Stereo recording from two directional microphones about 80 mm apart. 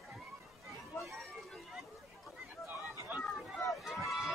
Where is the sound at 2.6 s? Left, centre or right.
Right.